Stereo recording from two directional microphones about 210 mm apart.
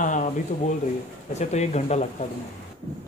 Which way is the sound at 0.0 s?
35° left (ahead or behind).